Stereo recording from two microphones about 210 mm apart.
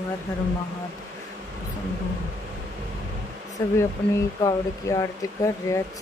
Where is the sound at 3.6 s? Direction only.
15° left (ahead or behind).